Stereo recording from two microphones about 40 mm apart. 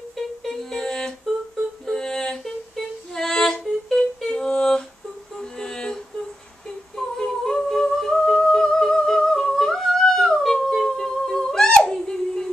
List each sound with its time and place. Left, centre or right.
0.4 s music: centre
4.5 s a sound: centre
5.4 s music: centre
7.2 s humming: centre
10.7 s music: centre
11.9 s a sound: centre